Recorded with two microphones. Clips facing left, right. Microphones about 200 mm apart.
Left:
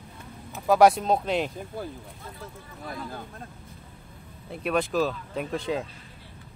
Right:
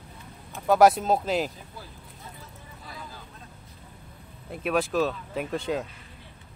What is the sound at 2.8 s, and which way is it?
Speech, 55° left (ahead or behind).